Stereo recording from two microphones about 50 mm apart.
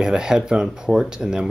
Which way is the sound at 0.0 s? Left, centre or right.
Centre.